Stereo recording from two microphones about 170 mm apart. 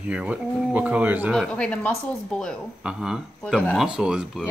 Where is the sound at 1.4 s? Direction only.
5° left (ahead or behind).